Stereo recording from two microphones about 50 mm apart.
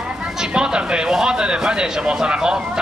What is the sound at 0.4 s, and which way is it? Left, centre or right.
A man's voice, centre.